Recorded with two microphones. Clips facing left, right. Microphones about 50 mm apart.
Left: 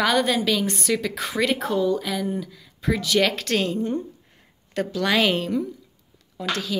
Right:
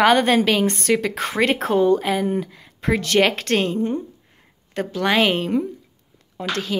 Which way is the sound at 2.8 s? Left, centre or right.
Right.